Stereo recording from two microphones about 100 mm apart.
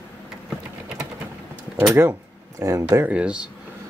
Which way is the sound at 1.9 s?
25° right (ahead or behind).